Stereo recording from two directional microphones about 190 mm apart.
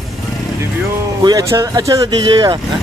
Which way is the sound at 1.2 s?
20° right (ahead or behind).